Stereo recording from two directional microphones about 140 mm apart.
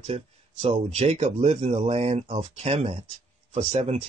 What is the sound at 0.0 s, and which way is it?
Speech, 50° right (ahead or behind).